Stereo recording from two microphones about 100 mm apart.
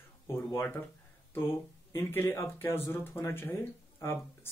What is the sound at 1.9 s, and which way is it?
Speech, 25° left (ahead or behind).